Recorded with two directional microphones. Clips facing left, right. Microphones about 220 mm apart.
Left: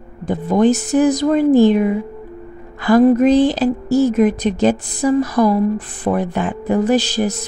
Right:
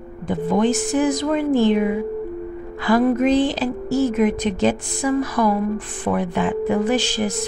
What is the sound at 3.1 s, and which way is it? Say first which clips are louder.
Speech: left 5 dB; 35° left (ahead or behind).